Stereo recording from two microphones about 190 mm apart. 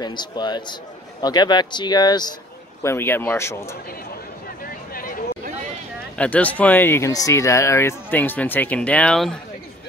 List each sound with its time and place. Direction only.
0.0 s speech: 25° left (ahead or behind)
4.9 s a sound: 50° left (ahead or behind)
6.1 s speech: 5° left (ahead or behind)